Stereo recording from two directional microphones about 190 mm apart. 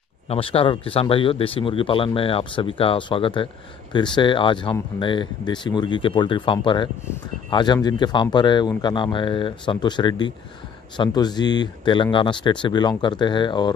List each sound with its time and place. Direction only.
0.3 s speech: 30° left (ahead or behind)